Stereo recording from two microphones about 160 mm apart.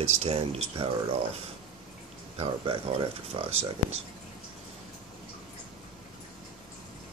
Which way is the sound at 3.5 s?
40° right (ahead or behind).